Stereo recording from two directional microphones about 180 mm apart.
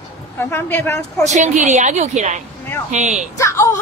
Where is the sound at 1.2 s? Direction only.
40° right (ahead or behind).